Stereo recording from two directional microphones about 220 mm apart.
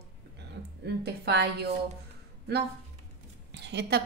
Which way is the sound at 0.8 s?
50° right (ahead or behind).